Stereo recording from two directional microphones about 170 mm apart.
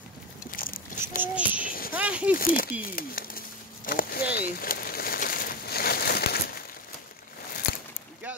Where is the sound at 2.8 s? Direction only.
60° left (ahead or behind).